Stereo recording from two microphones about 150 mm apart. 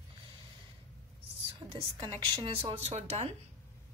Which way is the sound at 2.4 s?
40° right (ahead or behind).